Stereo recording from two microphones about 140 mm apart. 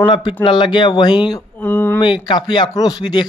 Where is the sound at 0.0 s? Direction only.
35° left (ahead or behind).